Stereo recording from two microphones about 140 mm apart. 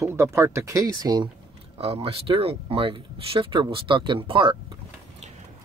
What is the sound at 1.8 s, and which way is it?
Speech, 45° right (ahead or behind).